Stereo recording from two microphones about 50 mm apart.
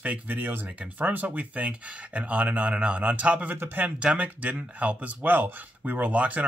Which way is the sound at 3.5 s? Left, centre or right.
Right.